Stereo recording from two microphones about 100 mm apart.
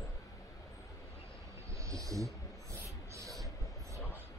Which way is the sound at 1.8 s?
30° right (ahead or behind).